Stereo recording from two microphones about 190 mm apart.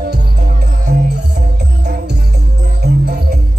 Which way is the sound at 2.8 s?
60° right (ahead or behind).